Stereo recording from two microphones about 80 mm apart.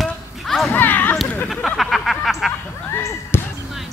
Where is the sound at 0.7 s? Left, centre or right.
Left.